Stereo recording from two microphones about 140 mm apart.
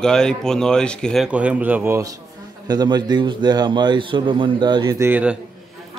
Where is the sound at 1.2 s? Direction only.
10° right (ahead or behind).